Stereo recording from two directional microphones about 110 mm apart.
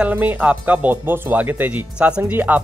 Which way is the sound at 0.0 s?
15° right (ahead or behind).